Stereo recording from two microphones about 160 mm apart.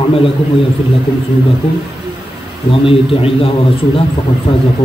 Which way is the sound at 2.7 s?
35° left (ahead or behind).